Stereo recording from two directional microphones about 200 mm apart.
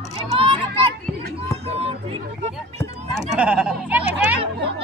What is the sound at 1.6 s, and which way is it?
Speech, 30° right (ahead or behind).